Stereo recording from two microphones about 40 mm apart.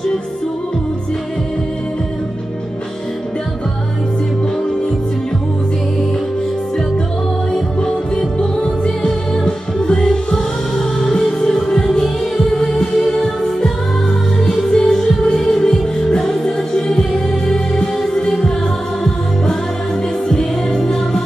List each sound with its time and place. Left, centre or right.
8.2 s music: centre
14.7 s music: centre
20.2 s music: centre